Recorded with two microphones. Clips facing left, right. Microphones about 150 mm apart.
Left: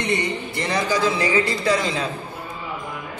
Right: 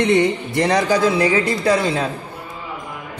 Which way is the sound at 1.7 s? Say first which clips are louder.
Right 6 dB; 60° right (ahead or behind).